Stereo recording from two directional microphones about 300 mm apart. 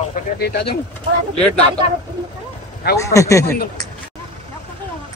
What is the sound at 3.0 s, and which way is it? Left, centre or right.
Speech, centre.